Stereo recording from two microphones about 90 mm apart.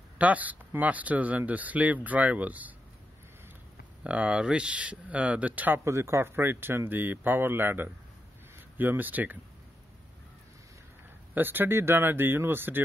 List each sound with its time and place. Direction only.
0.2 s speech: 15° right (ahead or behind)
4.0 s speech: 10° right (ahead or behind)
5.9 s speech: 30° right (ahead or behind)
11.3 s speech: 20° right (ahead or behind)